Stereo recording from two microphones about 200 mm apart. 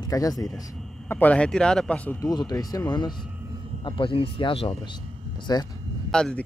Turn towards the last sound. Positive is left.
turn(degrees=5)  # may be behind; listen again after turning